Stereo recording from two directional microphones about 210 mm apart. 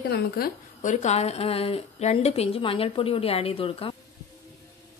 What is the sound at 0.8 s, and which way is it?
A woman's voice, 30° left (ahead or behind).